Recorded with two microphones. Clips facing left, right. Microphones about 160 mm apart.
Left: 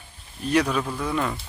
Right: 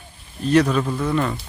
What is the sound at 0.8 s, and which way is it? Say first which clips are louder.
Speech: right 5 dB; 5° right (ahead or behind).